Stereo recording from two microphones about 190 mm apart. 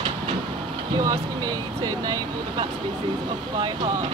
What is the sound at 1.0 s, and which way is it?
Speech, 15° right (ahead or behind).